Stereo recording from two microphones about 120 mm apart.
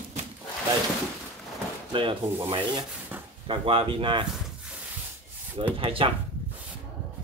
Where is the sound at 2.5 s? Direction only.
45° right (ahead or behind).